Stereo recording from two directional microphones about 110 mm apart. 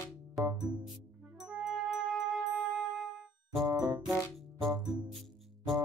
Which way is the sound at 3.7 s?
35° right (ahead or behind).